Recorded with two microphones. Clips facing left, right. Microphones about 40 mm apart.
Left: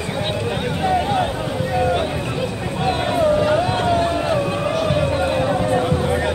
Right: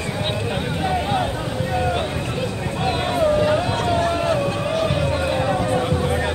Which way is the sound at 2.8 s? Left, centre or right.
Centre.